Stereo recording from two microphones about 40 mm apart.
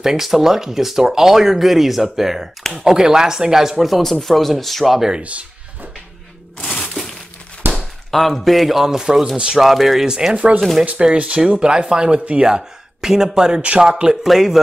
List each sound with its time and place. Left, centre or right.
0.0 s speech: centre
4.0 s a man's voice: centre
5.2 s a sound: right
6.6 s a sound: left
6.9 s crumpling: centre
7.6 s chop: right
8.1 s a man's voice: centre
9.6 s a man's voice: centre
10.0 s speech: centre
10.3 s speech: right
11.0 s speech: right
13.6 s speech: right
13.8 s speech: centre
14.2 s a man's voice: centre